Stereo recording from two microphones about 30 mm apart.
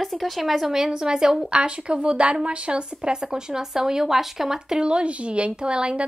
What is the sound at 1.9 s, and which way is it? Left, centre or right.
Speech, right.